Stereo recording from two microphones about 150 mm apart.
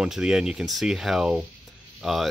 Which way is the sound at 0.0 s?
5° right (ahead or behind).